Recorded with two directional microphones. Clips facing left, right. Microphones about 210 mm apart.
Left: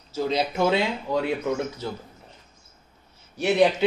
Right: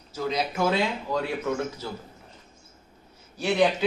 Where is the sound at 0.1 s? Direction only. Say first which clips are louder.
Left 3 dB; 25° left (ahead or behind).